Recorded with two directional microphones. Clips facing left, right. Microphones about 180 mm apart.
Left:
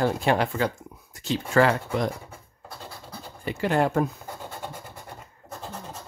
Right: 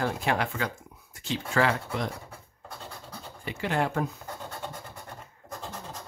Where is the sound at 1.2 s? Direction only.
45° left (ahead or behind).